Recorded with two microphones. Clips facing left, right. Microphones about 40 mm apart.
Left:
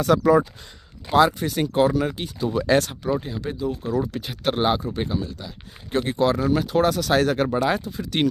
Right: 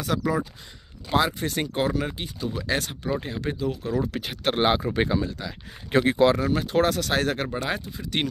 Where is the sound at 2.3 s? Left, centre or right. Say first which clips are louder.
Left 8 dB; centre.